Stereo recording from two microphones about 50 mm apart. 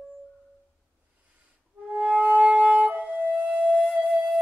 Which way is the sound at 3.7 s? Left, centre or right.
Centre.